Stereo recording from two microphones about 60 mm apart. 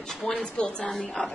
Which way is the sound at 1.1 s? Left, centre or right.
Centre.